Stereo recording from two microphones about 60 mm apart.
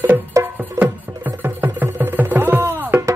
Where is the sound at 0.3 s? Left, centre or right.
Right.